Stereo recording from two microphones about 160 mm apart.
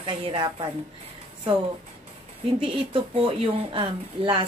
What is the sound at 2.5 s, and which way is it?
A woman's voice, 35° right (ahead or behind).